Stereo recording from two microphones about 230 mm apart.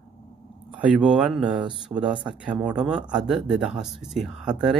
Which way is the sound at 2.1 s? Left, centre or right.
Right.